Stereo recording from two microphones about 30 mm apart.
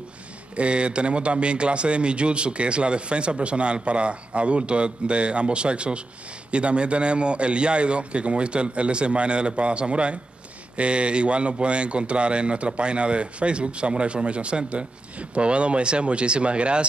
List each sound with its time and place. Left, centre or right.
0.6 s a man's voice: right